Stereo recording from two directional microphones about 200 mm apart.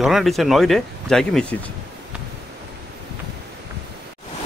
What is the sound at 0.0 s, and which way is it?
Speech, centre (ahead or behind).